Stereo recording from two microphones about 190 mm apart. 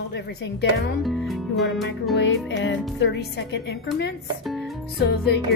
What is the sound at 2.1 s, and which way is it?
A woman's voice, 70° left (ahead or behind).